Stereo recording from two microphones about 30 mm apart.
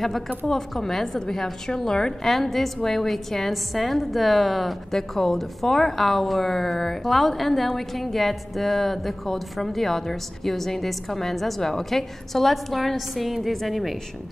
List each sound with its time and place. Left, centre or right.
0.5 s a woman's voice: centre
2.2 s a woman's voice: centre